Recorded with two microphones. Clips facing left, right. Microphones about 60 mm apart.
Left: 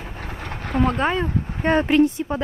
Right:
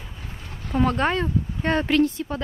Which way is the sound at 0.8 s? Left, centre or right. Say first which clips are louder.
Left 1 dB; centre.